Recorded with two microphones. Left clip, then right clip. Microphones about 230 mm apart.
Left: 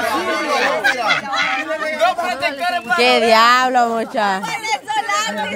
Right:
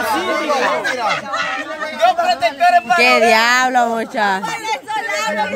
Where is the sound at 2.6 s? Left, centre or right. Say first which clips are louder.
Right 7 dB; centre.